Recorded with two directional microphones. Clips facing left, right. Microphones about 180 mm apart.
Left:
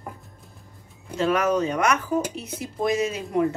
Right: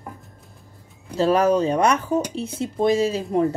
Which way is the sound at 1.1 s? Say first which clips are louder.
Right 4 dB; 35° right (ahead or behind).